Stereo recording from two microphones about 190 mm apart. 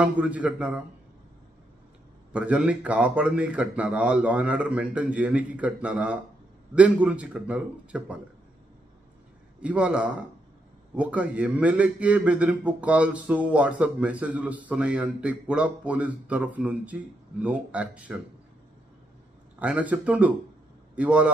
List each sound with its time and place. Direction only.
0.0 s a man's voice: 10° right (ahead or behind)
2.3 s a man's voice: 5° right (ahead or behind)
9.6 s a man's voice: 5° right (ahead or behind)
19.6 s a man's voice: 5° right (ahead or behind)